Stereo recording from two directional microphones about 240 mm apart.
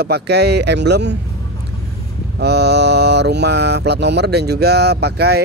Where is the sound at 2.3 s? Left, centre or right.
Right.